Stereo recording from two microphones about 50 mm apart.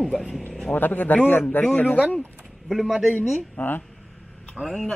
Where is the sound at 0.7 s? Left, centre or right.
Left.